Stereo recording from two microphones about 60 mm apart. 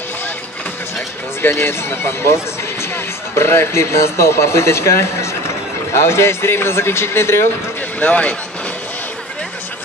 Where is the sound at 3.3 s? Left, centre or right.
Left.